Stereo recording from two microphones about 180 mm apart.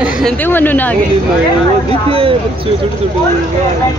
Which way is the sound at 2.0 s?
30° right (ahead or behind).